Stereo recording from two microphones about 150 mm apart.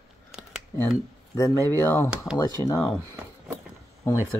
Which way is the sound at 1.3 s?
20° left (ahead or behind).